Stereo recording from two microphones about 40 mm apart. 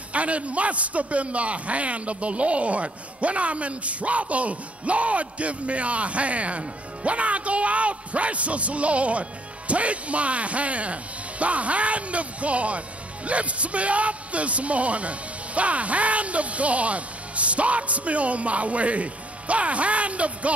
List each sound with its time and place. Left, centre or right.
0.1 s a man's voice: right